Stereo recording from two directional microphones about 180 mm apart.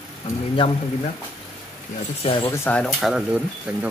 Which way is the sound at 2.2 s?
30° left (ahead or behind).